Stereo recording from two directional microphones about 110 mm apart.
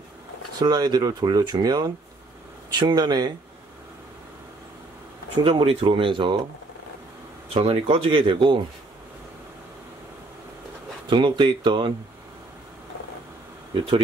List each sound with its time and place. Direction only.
0.6 s speech: 40° right (ahead or behind)
5.4 s speech: 55° right (ahead or behind)
7.5 s speech: 60° right (ahead or behind)
11.1 s speech: 45° right (ahead or behind)